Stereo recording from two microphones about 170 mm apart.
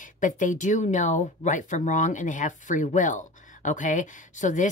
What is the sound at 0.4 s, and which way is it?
Speech, 50° left (ahead or behind).